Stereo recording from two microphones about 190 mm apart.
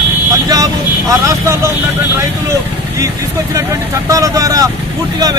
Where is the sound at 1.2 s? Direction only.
15° right (ahead or behind).